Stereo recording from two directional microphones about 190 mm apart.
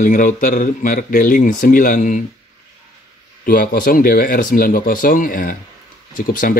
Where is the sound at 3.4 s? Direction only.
50° left (ahead or behind).